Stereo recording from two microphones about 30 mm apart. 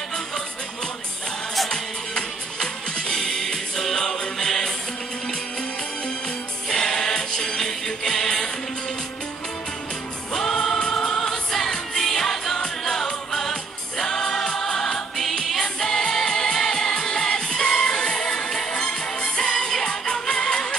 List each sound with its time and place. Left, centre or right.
1.7 s music: left
6.7 s music: left
10.3 s music: centre